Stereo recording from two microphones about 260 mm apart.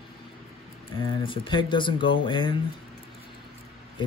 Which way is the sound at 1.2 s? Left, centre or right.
Centre.